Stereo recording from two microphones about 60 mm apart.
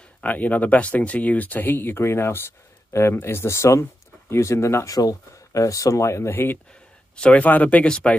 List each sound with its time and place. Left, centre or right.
0.2 s speech: left
4.8 s speech: left
7.2 s speech: centre
7.4 s speech: left